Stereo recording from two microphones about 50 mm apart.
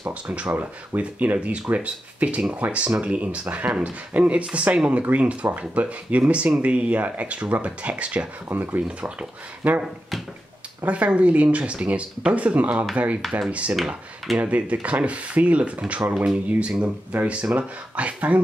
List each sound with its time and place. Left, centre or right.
0.1 s speech: right
10.9 s speech: right